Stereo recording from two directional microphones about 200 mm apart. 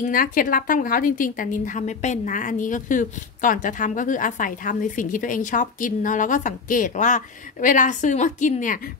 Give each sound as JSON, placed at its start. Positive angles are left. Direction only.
{"t": 0.0, "sound": "a woman's voice", "side_deg": 45}